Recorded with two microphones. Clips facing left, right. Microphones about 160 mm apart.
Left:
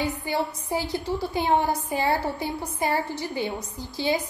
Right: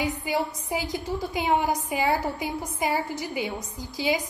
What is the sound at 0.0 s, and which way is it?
A woman's voice, 15° right (ahead or behind).